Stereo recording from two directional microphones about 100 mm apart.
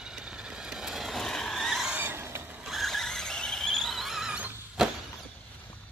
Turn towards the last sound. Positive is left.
turn(degrees=-15)  # may be behind; listen again after turning